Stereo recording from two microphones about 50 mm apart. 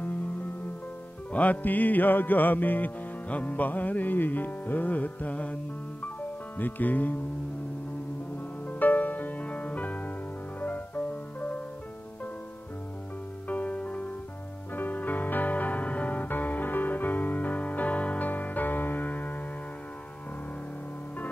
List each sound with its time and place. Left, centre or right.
1.3 s music: left
8.6 s music: left
13.5 s music: left
14.7 s music: left